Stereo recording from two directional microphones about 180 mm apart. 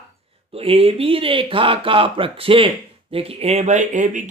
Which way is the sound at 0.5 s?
30° right (ahead or behind).